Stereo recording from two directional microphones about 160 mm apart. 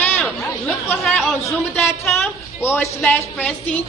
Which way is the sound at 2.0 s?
15° left (ahead or behind).